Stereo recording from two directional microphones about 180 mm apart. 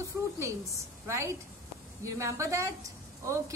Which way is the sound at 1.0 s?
15° right (ahead or behind).